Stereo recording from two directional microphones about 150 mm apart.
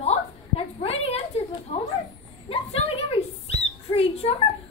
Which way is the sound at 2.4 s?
40° left (ahead or behind).